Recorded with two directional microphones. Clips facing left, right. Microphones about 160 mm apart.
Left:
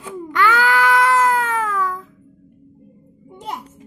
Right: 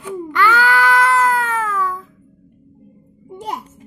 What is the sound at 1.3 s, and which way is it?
Cat, 15° left (ahead or behind).